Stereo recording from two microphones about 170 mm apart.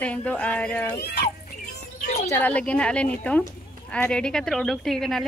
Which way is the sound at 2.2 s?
10° left (ahead or behind).